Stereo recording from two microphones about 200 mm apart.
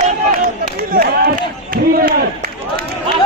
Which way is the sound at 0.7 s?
50° right (ahead or behind).